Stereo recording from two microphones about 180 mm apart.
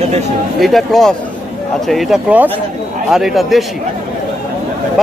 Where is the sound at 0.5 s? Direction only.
Centre (ahead or behind).